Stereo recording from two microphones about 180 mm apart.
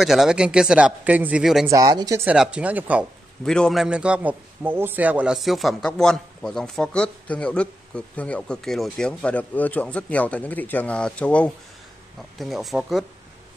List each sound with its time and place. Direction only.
0.0 s a man's voice: centre (ahead or behind)
1.7 s speech: 20° right (ahead or behind)
2.2 s speech: 5° right (ahead or behind)
3.4 s a man's voice: 5° left (ahead or behind)